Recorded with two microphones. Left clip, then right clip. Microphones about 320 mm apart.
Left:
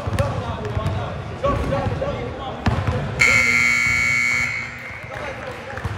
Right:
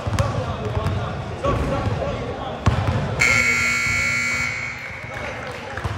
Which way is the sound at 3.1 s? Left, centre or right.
Left.